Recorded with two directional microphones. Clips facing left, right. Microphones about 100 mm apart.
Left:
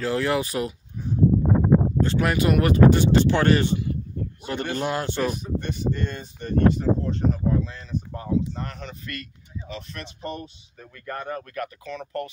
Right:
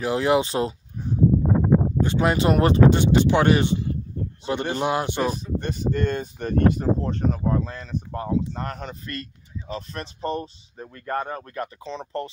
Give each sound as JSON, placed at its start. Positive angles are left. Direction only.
{"t": 0.0, "sound": "speech", "side_deg": -20}
{"t": 2.0, "sound": "speech", "side_deg": -20}
{"t": 5.2, "sound": "speech", "side_deg": -35}